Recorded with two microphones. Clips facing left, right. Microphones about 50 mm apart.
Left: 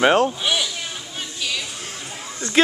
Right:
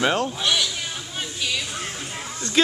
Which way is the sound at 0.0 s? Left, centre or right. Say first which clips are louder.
Left 6 dB; left.